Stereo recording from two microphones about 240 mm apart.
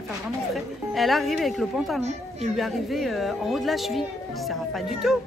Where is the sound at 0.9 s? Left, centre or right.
Centre.